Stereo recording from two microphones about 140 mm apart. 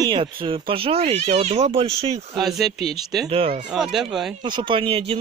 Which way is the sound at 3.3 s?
45° right (ahead or behind).